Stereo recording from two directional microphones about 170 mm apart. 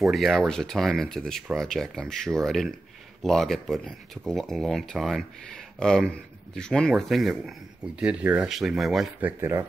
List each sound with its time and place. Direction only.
0.0 s speech: centre (ahead or behind)
9.4 s speech: 15° right (ahead or behind)